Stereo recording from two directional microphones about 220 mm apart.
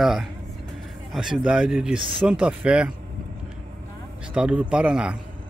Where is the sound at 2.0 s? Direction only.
20° right (ahead or behind).